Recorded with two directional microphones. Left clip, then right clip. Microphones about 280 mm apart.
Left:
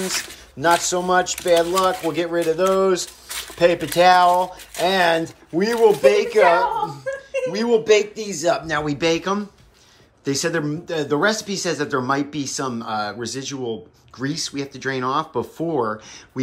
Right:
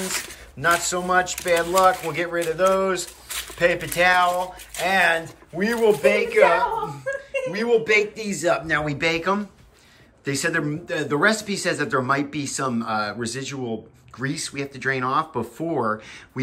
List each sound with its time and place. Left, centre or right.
0.1 s speech: centre
7.1 s chuckle: left
7.5 s speech: centre